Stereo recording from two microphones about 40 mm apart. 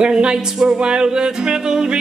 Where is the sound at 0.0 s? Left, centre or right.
Right.